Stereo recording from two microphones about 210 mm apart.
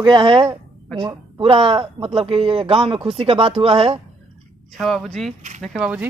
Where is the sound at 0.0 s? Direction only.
25° right (ahead or behind).